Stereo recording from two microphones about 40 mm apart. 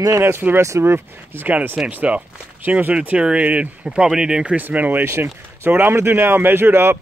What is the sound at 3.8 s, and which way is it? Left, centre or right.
Speech, right.